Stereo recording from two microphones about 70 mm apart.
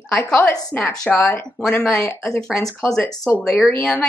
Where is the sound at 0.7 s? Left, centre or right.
Left.